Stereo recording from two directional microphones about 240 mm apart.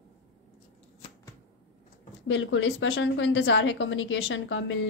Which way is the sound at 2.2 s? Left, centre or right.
Left.